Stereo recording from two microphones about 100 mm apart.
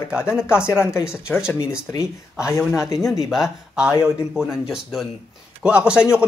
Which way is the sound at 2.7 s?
30° left (ahead or behind).